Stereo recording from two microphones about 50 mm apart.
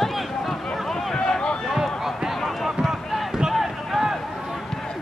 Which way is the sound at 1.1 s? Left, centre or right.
Centre.